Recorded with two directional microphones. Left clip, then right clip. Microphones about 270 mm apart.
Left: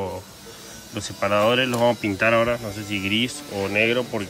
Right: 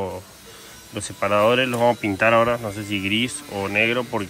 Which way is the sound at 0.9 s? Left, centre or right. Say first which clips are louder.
Right 1 dB; centre.